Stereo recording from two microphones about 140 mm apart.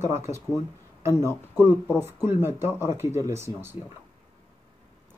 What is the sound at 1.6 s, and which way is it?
Speech, 15° right (ahead or behind).